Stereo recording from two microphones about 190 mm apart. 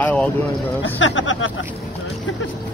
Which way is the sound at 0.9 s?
90° left.